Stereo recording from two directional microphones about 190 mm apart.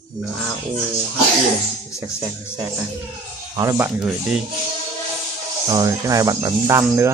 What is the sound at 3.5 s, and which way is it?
Speech, 15° right (ahead or behind).